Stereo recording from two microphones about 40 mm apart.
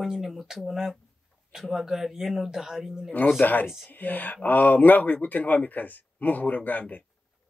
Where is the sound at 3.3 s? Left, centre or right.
Left.